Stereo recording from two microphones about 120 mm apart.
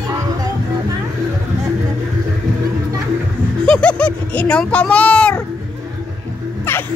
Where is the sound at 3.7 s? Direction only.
10° left (ahead or behind).